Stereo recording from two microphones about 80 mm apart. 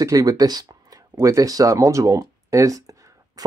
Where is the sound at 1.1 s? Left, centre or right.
Right.